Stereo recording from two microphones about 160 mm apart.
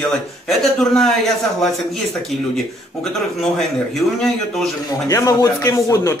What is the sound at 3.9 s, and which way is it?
Speech, centre (ahead or behind).